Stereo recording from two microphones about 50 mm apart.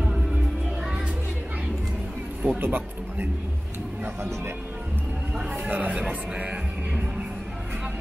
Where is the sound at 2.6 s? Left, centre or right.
Right.